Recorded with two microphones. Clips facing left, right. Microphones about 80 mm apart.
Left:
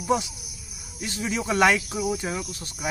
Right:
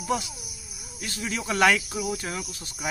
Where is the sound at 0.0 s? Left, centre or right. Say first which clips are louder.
Left 4 dB; centre.